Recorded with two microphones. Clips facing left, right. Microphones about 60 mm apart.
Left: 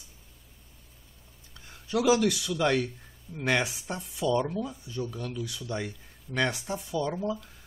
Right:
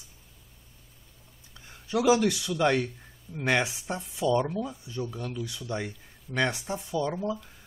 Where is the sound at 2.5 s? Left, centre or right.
Centre.